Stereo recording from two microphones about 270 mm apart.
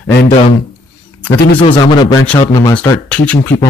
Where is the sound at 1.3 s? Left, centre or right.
Left.